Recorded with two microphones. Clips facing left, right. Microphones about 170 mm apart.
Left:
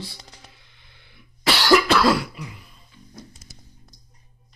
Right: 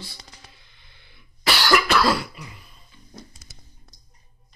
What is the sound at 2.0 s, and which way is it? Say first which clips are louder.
Throat clearing: left 3 dB; 10° left (ahead or behind).